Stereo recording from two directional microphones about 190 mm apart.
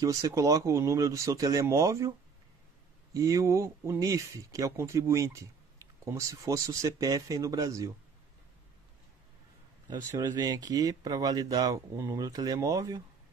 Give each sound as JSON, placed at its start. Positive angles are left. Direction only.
{"t": 0.0, "sound": "speech", "side_deg": -20}
{"t": 9.8, "sound": "speech", "side_deg": -20}